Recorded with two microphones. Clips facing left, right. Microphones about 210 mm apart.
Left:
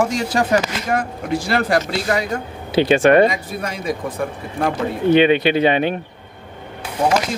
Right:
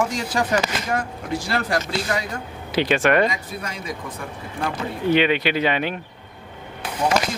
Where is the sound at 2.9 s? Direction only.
30° left (ahead or behind).